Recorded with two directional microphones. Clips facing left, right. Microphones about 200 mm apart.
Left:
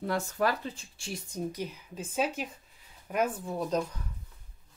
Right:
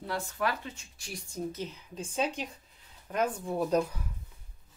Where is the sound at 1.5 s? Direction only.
10° left (ahead or behind); by 4.0 s 5° right (ahead or behind).